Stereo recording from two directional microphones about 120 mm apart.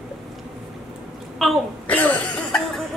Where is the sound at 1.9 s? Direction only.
15° left (ahead or behind).